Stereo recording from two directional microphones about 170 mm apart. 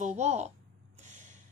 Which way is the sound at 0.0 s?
45° right (ahead or behind).